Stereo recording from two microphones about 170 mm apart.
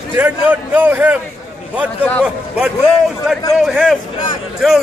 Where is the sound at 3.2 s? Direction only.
Centre (ahead or behind).